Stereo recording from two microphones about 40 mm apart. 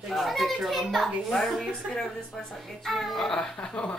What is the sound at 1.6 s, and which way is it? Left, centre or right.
Speech, centre.